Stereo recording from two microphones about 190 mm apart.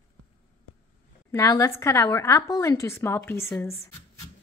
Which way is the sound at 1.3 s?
15° left (ahead or behind).